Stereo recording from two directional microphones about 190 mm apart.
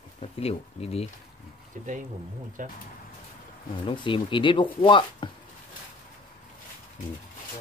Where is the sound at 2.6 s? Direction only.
45° right (ahead or behind).